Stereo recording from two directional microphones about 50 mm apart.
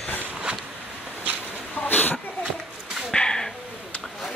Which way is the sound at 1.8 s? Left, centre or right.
Left.